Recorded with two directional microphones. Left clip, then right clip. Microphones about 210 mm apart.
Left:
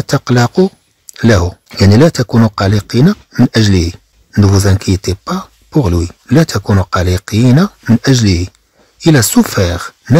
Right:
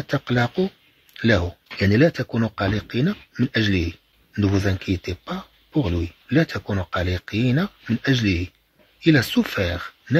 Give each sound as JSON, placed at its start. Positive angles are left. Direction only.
{"t": 0.2, "sound": "speech", "side_deg": 40}